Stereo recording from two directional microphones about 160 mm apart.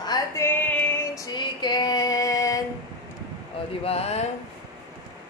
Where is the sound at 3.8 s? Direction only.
40° left (ahead or behind).